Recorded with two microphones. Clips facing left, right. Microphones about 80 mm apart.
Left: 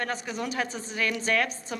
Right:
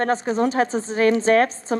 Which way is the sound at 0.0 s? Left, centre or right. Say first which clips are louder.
Right 11 dB; right.